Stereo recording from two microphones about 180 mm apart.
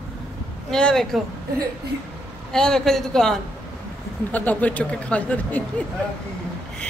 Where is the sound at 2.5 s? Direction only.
5° left (ahead or behind).